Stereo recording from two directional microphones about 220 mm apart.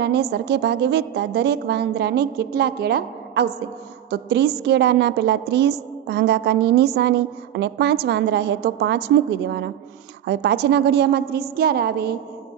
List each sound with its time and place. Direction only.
0.0 s a woman's voice: 50° right (ahead or behind)